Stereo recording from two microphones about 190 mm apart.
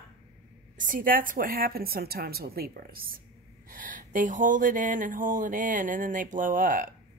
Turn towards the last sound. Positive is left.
turn(degrees=-45)  # may be behind; listen again after turning